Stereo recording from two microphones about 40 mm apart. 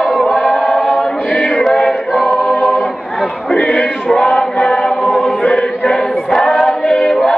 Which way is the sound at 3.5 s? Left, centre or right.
Left.